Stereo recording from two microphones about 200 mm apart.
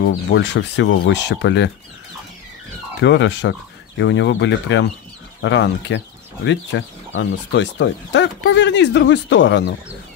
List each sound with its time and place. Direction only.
0.0 s speech: 60° left (ahead or behind)
3.0 s speech: 60° left (ahead or behind)